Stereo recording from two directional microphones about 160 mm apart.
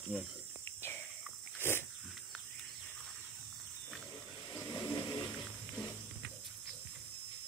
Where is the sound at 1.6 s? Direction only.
15° left (ahead or behind).